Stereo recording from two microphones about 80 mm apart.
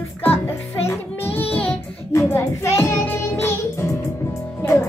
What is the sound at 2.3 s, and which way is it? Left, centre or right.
Music, left.